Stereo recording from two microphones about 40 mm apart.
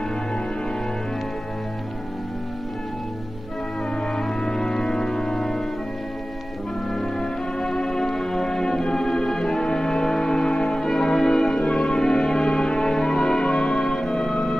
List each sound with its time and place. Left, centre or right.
4.1 s music: centre
6.9 s music: centre